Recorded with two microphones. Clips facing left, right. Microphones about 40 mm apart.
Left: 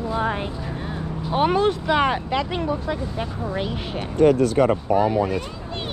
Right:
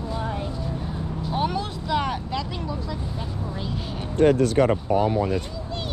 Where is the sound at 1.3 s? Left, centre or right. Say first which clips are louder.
Left 8 dB; left.